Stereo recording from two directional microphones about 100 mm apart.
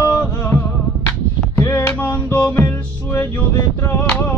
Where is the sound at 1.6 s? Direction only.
30° left (ahead or behind).